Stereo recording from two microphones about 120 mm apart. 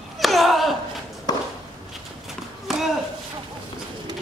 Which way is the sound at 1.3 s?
35° left (ahead or behind).